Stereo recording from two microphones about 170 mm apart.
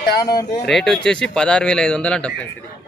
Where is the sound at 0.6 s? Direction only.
5° left (ahead or behind).